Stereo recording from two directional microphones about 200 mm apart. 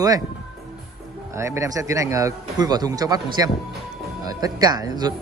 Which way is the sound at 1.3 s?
15° right (ahead or behind).